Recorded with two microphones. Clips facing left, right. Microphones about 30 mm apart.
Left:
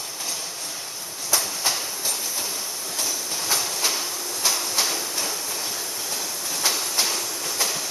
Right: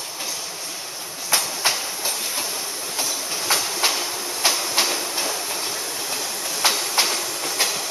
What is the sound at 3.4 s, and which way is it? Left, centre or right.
Train, right.